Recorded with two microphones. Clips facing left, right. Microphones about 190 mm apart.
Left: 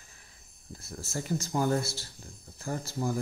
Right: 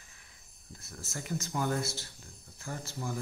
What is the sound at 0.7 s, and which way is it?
Speech, 30° left (ahead or behind).